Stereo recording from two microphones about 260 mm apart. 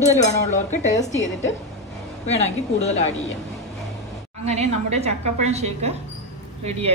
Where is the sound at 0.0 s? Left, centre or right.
Left.